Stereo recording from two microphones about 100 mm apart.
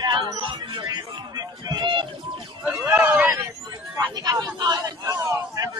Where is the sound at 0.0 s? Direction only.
45° right (ahead or behind).